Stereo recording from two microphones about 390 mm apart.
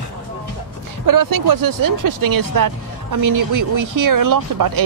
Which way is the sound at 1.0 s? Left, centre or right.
Right.